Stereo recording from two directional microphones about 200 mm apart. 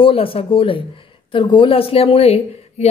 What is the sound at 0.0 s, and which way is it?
A woman's voice, 25° left (ahead or behind).